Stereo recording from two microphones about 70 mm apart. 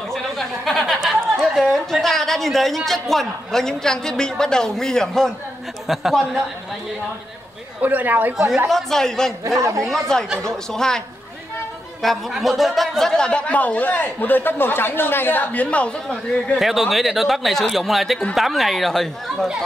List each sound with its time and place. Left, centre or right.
0.1 s a sound: centre
1.4 s chatter: centre
1.7 s a man's voice: centre
7.8 s speech: right
8.6 s a man's voice: centre
9.6 s a woman's voice: right
9.8 s a man's voice: centre
12.0 s a man's voice: centre
16.5 s a man's voice: centre